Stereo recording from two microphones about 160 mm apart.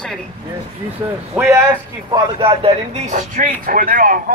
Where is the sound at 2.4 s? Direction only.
35° right (ahead or behind).